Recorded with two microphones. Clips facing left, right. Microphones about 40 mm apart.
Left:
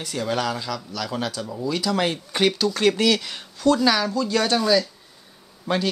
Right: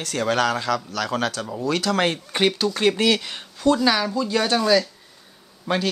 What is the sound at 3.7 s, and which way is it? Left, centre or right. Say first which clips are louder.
Speech: even; centre.